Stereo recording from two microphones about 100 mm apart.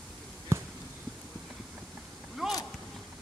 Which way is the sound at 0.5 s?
25° right (ahead or behind).